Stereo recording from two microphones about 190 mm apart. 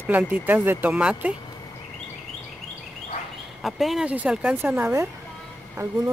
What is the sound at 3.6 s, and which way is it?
Speech, centre (ahead or behind).